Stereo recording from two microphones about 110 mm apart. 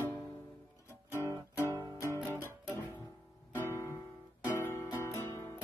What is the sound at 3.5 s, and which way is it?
Music, 30° left (ahead or behind).